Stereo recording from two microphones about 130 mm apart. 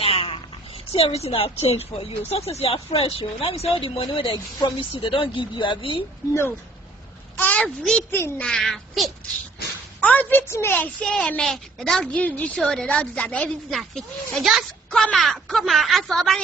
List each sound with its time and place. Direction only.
0.0 s a sound: 45° left (ahead or behind)
0.9 s speech: 50° left (ahead or behind)
7.3 s a child's voice: 10° left (ahead or behind)
8.1 s a woman's voice: 15° left (ahead or behind)
8.5 s a woman's voice: 5° left (ahead or behind)